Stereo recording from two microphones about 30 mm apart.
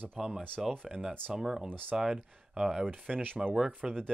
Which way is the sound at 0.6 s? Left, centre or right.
Centre.